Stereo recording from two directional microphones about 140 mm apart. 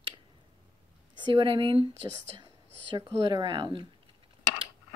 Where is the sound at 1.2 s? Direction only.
35° right (ahead or behind).